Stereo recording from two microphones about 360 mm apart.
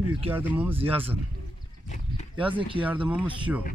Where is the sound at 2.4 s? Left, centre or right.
Centre.